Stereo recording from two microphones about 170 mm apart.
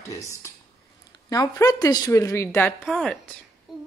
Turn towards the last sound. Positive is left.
turn(degrees=0)  # may be behind; listen again after turning